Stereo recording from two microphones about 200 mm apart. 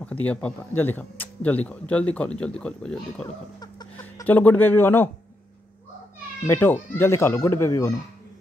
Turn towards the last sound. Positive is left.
turn(degrees=15)  # may be behind; listen again after turning